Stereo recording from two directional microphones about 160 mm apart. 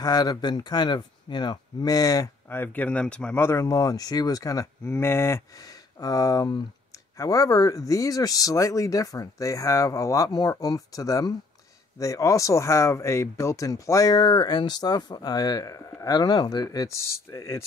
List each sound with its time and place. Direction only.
0.0 s speech: 25° left (ahead or behind)